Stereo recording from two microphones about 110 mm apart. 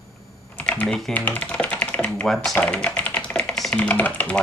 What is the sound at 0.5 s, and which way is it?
Typing, 10° left (ahead or behind).